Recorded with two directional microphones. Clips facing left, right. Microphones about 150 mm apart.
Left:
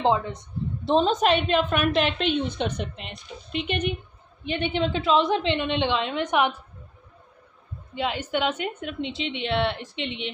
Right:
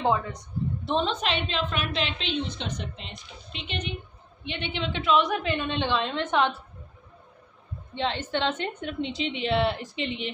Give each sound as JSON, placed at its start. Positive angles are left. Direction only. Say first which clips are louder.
{"t": 0.0, "sound": "a woman's voice", "louder": "left 3 dB", "side_deg": 25}
{"t": 0.8, "sound": "a woman's voice", "louder": "left 7 dB", "side_deg": 40}
{"t": 7.9, "sound": "a woman's voice", "louder": "left 1 dB", "side_deg": 10}